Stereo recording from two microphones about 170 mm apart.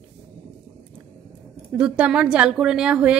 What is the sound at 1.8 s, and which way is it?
A woman's voice, 5° right (ahead or behind).